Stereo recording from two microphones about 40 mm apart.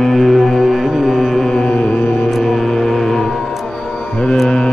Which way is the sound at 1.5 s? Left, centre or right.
Left.